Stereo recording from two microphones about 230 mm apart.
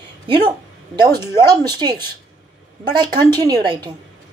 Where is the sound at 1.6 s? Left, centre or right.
Centre.